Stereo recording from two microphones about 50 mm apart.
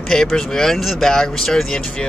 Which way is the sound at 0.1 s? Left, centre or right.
Centre.